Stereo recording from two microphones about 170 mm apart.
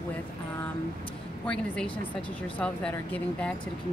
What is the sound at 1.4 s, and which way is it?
Speech, 5° left (ahead or behind).